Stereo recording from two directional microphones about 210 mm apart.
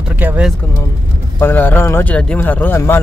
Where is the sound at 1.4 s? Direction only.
10° left (ahead or behind).